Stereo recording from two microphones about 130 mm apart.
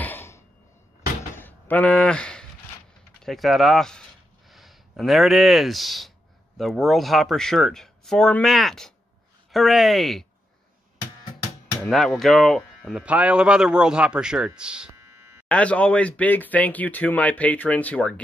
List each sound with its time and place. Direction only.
0.0 s cough: 15° left (ahead or behind)
1.3 s a sound: 15° left (ahead or behind)
3.3 s speech: centre (ahead or behind)
11.8 s speech: centre (ahead or behind)
15.4 s speech: 10° left (ahead or behind)